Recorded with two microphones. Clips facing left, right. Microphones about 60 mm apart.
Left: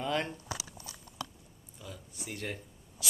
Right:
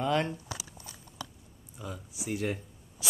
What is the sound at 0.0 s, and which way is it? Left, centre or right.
Speech, centre.